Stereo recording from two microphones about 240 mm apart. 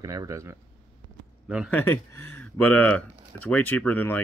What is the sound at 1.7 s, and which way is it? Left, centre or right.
Speech, centre.